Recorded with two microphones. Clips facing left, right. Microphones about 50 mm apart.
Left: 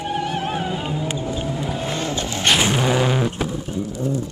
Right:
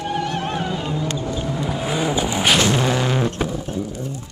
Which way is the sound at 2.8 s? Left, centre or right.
Centre.